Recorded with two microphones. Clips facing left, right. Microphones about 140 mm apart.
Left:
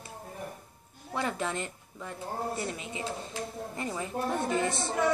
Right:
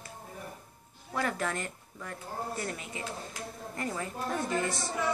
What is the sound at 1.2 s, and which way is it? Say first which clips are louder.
A woman's voice: even; 20° left (ahead or behind).